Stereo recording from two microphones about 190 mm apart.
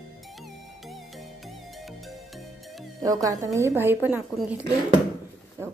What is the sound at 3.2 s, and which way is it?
A woman's voice, 15° right (ahead or behind).